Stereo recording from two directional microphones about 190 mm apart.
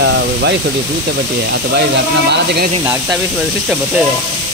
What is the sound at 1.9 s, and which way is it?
Speech, 65° right (ahead or behind).